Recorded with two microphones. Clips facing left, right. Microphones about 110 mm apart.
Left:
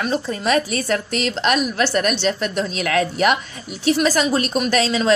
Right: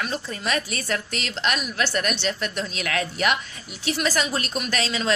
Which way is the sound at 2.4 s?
45° left (ahead or behind).